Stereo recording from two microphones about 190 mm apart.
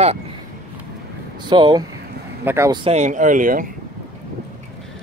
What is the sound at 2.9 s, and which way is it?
Speech, 40° right (ahead or behind).